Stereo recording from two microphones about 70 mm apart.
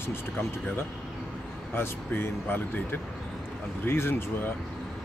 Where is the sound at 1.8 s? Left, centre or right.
Left.